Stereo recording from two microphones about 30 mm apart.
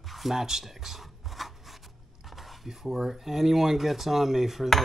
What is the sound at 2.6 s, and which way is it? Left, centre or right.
Speech, centre.